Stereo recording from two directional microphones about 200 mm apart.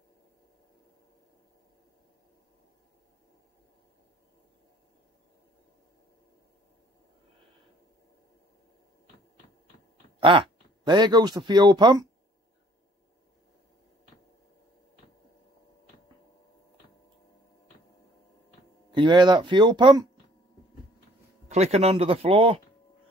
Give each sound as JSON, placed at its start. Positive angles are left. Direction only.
{"t": 10.2, "sound": "speech", "side_deg": -25}
{"t": 18.9, "sound": "speech", "side_deg": -25}
{"t": 21.5, "sound": "speech", "side_deg": -35}